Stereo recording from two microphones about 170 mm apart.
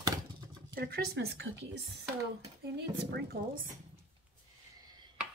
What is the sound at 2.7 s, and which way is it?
Speech, 75° right (ahead or behind).